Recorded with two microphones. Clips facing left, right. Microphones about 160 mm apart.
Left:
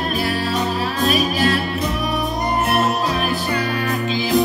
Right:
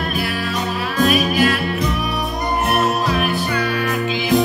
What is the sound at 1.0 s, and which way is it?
Music, 35° left (ahead or behind).